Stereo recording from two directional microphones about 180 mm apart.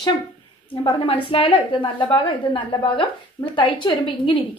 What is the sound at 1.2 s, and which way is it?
A woman's voice, 30° left (ahead or behind).